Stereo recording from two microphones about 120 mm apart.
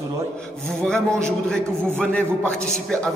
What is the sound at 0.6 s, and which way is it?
A man's voice, 5° left (ahead or behind).